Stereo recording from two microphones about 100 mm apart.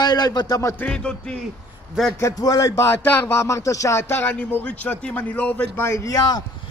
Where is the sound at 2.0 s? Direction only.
5° right (ahead or behind).